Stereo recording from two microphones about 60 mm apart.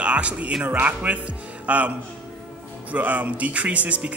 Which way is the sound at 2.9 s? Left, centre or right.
Right.